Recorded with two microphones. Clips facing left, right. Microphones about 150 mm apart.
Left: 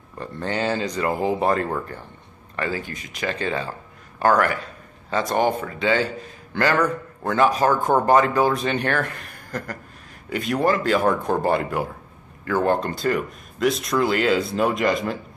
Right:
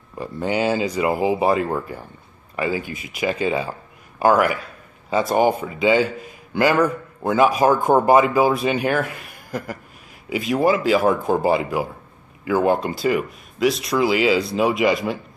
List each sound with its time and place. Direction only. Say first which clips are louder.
0.2 s a man's voice: right 4 dB; 10° right (ahead or behind)